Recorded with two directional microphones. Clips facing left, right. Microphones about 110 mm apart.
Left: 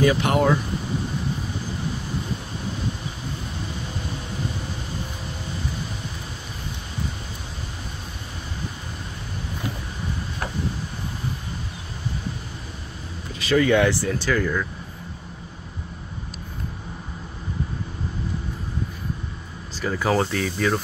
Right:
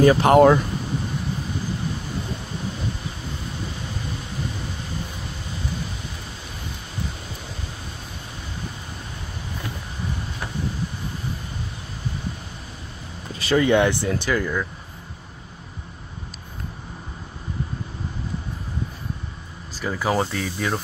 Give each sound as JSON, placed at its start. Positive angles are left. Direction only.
{"t": 0.0, "sound": "speech", "side_deg": -45}
{"t": 13.4, "sound": "speech", "side_deg": -30}
{"t": 19.8, "sound": "speech", "side_deg": -5}